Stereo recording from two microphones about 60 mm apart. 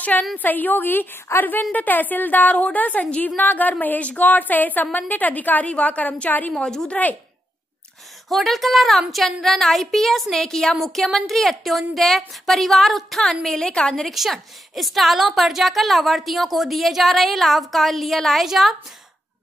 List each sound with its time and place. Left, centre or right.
0.4 s a woman's voice: left
6.6 s speech: centre
8.3 s a woman's voice: centre
13.9 s a woman's voice: centre